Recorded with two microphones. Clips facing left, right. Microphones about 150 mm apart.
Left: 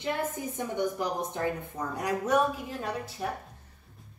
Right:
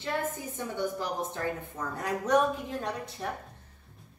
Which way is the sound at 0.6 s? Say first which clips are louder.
Left 3 dB; 15° left (ahead or behind).